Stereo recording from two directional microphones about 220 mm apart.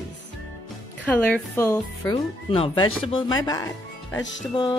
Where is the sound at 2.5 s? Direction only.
25° left (ahead or behind).